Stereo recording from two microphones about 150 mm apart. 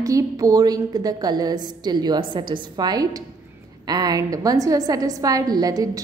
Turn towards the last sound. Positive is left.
turn(degrees=-25)  # may be behind; listen again after turning